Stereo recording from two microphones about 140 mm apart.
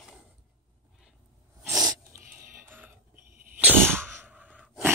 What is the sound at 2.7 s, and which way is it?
Sneeze, 15° right (ahead or behind).